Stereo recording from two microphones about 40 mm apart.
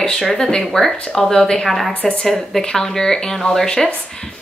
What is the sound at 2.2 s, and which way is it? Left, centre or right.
A woman's voice, centre.